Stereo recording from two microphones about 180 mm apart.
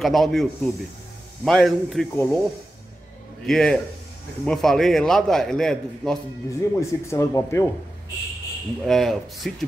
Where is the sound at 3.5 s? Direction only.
Centre (ahead or behind).